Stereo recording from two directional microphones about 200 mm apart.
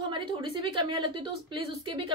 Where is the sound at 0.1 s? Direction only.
25° right (ahead or behind).